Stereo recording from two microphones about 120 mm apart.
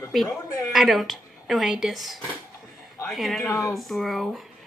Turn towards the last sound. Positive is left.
turn(degrees=0)  # may be behind; listen again after turning